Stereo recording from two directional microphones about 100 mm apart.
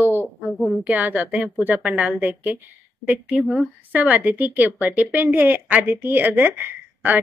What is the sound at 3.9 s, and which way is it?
A woman's voice, 15° right (ahead or behind).